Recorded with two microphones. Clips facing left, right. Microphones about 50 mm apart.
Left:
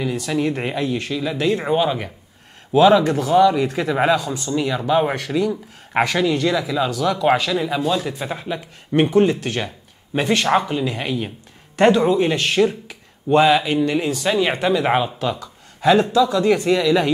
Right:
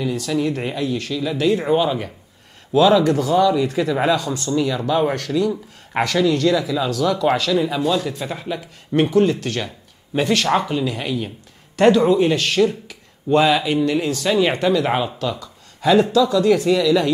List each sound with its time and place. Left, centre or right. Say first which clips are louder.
0.0 s speech: even; centre